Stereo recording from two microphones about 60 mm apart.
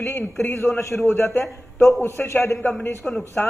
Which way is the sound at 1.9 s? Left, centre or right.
Left.